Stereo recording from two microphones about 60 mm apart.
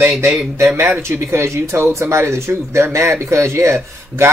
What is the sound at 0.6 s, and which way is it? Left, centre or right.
Speech, right.